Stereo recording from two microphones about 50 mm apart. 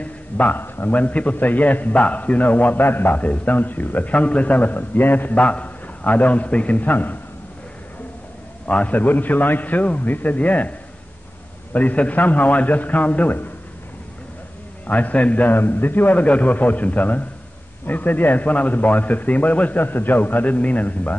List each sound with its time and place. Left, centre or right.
0.0 s a sound: left
0.6 s a man's voice: left
0.9 s a man's voice: left
3.2 s a man's voice: left
5.4 s a man's voice: left
8.6 s a man's voice: left
11.7 s a man's voice: left
14.9 s a man's voice: left